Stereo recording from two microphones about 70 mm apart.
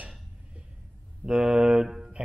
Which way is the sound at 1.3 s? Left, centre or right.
Centre.